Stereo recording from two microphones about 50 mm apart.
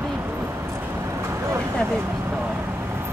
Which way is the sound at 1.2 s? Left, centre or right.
Right.